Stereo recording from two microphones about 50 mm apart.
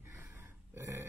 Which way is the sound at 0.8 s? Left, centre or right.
Right.